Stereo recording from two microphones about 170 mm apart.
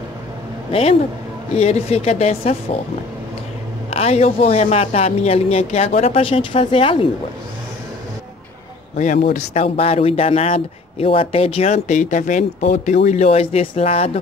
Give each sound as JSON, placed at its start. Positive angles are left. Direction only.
{"t": 0.7, "sound": "speech", "side_deg": 35}
{"t": 3.9, "sound": "speech", "side_deg": 35}
{"t": 8.9, "sound": "a man's voice", "side_deg": 45}